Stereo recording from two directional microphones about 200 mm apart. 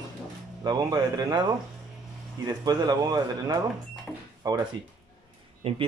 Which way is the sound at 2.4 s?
20° right (ahead or behind).